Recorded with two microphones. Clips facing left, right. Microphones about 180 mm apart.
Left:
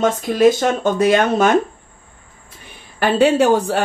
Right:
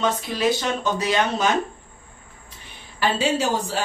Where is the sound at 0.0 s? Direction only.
50° left (ahead or behind).